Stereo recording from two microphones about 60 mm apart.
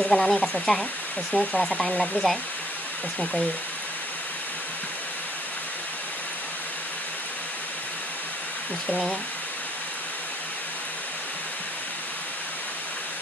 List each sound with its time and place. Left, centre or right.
0.0 s speech: centre
1.3 s speech: centre
1.8 s speech: centre